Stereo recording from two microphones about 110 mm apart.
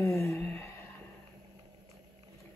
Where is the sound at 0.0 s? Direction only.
25° left (ahead or behind).